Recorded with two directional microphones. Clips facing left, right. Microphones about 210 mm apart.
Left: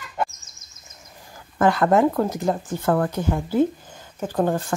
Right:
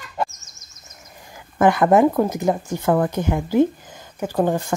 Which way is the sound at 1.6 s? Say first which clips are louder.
Right 3 dB; 20° right (ahead or behind).